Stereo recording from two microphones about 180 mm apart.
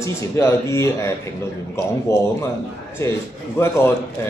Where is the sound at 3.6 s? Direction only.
15° left (ahead or behind).